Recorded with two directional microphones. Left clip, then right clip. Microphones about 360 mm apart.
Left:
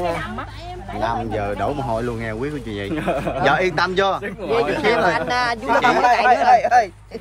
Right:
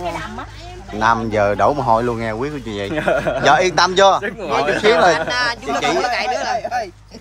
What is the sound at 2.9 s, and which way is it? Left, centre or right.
Speech, right.